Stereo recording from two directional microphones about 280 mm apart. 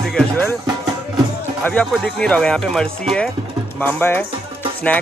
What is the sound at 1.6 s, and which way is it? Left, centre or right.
Speech, centre.